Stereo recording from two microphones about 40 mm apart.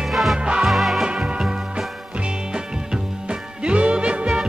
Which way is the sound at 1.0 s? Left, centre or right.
Right.